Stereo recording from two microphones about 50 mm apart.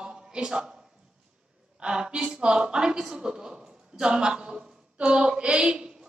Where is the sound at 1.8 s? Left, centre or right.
Centre.